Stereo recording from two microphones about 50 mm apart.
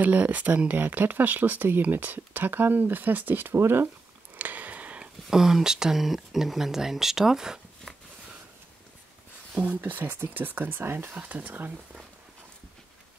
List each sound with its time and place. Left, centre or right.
0.0 s speech: right
4.4 s a sound: right
5.3 s speech: centre
9.8 s speech: right
11.1 s speech: right